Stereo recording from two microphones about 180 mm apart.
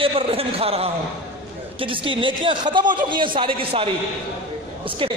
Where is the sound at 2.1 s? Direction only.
30° right (ahead or behind).